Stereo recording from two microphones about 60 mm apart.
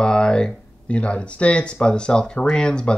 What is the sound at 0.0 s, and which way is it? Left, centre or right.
Speech, centre.